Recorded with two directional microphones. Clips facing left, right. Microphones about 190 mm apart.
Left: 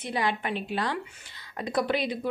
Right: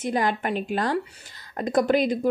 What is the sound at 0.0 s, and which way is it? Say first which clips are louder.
Speech: right 5 dB; 45° right (ahead or behind).